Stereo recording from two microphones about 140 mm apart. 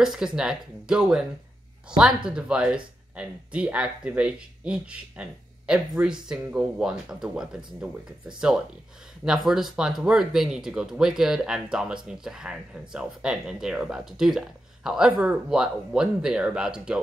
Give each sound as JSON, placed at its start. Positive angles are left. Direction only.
{"t": 0.0, "sound": "speech", "side_deg": -5}